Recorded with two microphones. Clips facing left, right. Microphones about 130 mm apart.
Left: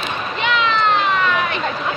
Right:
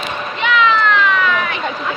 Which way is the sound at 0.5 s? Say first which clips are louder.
Right 4 dB; 30° left (ahead or behind).